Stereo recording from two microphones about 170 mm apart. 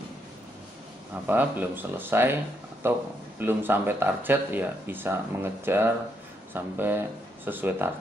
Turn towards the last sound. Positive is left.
turn(degrees=-10)  # may be behind; listen again after turning